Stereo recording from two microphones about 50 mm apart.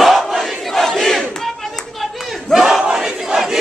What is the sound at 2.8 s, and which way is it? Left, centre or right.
Crowd, centre.